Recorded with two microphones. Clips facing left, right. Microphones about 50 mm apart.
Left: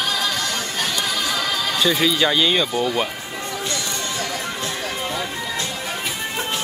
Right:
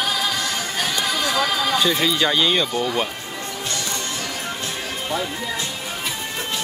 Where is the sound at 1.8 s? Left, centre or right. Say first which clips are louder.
Left 5 dB; centre.